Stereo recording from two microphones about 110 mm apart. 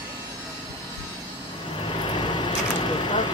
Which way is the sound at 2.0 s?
45° left (ahead or behind).